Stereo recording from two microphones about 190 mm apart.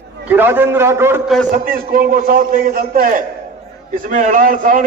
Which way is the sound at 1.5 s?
50° right (ahead or behind).